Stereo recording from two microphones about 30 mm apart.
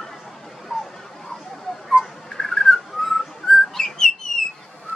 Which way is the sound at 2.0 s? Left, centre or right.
Centre.